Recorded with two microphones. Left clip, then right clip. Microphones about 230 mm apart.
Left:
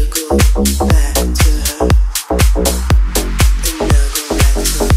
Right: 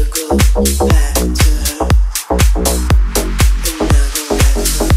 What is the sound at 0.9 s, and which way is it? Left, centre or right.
Music, left.